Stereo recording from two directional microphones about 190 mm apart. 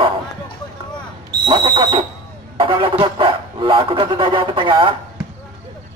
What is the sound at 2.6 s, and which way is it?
Bow-wow, 25° right (ahead or behind).